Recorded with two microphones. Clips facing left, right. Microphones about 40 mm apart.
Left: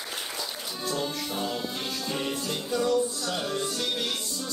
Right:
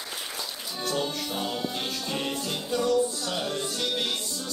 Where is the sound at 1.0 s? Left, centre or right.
Right.